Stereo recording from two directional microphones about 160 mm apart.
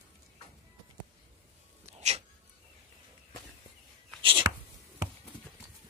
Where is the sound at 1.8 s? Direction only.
40° right (ahead or behind).